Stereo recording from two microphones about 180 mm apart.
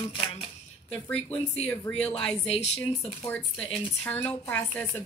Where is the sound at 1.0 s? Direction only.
5° left (ahead or behind).